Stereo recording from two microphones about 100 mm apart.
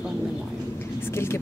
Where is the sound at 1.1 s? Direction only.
25° left (ahead or behind).